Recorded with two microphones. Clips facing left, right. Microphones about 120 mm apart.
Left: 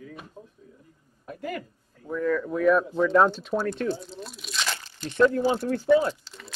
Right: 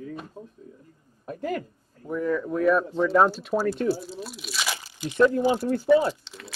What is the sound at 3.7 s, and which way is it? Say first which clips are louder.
Crunch: right 3 dB; 10° right (ahead or behind).